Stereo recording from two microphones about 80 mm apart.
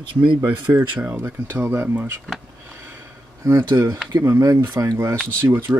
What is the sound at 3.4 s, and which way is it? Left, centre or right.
Speech, right.